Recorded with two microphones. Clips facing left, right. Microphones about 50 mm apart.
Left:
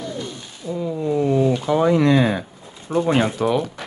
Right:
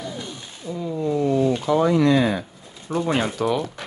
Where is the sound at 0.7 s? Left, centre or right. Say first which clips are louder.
Left 2 dB; centre.